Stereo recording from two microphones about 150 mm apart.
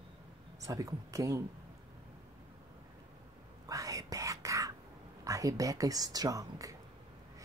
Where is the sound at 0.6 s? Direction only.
20° right (ahead or behind).